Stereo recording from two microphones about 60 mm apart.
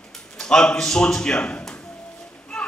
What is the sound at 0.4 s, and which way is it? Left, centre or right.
A man's voice, centre.